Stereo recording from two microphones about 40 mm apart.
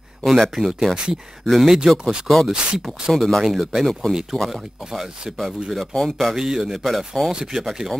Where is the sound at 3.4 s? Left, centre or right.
Centre.